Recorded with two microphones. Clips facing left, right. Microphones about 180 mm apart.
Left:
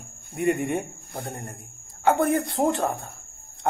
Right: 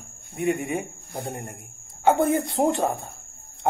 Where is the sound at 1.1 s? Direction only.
15° right (ahead or behind).